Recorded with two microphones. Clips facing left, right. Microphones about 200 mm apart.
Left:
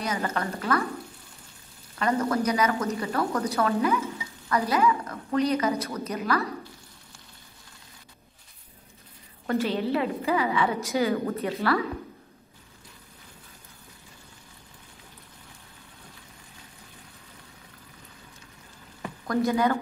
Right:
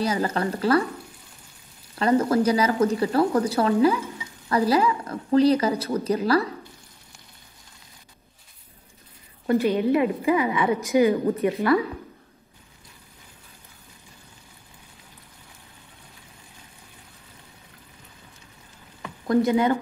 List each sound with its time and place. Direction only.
0.0 s a woman's voice: 30° right (ahead or behind)
2.0 s a woman's voice: 30° right (ahead or behind)
9.5 s a woman's voice: 15° right (ahead or behind)
19.2 s speech: 20° right (ahead or behind)